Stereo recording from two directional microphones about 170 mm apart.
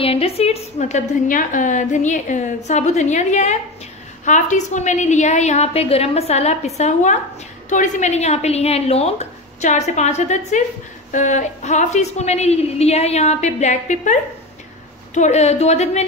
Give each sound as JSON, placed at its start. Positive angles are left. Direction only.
{"t": 0.0, "sound": "a woman's voice", "side_deg": 35}
{"t": 15.1, "sound": "a woman's voice", "side_deg": 40}